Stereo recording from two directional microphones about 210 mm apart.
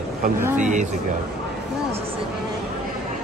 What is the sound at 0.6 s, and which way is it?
Speech, 35° right (ahead or behind).